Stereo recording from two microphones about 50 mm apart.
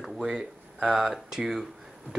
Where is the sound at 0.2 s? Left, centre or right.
Centre.